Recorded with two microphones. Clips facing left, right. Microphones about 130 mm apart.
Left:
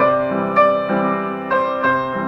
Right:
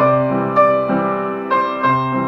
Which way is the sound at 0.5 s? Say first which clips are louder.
Right 1 dB; 10° right (ahead or behind).